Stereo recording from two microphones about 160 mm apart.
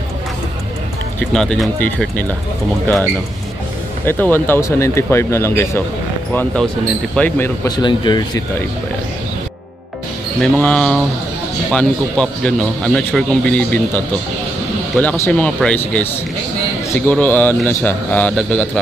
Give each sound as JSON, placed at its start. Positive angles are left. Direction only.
{"t": 1.2, "sound": "speech", "side_deg": 5}
{"t": 4.0, "sound": "a man's voice", "side_deg": 15}
{"t": 7.7, "sound": "speech", "side_deg": 30}
{"t": 10.4, "sound": "a man's voice", "side_deg": 5}
{"t": 17.1, "sound": "a man's voice", "side_deg": 10}